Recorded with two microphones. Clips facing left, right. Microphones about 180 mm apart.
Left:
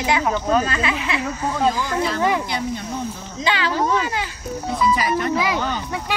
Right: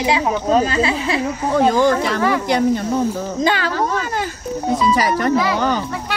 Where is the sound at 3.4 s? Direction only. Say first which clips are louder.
Right 2 dB; 45° right (ahead or behind).